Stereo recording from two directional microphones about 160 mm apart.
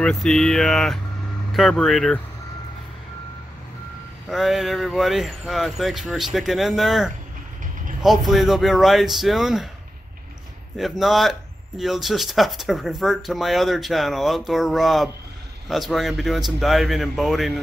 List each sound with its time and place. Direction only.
0.0 s speech: 5° left (ahead or behind)
4.3 s speech: centre (ahead or behind)
10.8 s speech: centre (ahead or behind)